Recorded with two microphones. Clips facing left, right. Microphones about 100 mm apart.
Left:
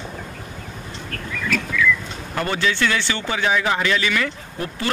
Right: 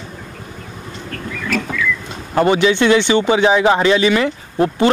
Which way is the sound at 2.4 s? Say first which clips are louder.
Right 8 dB; 20° right (ahead or behind).